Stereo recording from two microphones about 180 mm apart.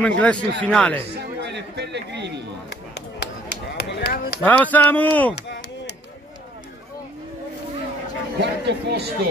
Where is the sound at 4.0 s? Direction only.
65° left (ahead or behind).